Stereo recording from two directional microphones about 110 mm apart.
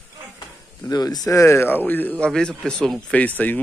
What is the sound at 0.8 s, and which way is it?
Speech, 35° left (ahead or behind).